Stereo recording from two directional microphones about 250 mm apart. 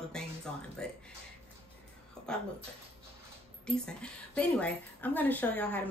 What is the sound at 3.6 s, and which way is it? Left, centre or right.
A woman's voice, centre.